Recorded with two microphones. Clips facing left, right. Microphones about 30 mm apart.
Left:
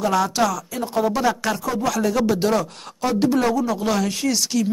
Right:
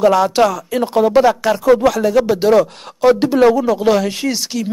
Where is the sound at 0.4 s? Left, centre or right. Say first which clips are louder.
Right 7 dB; right.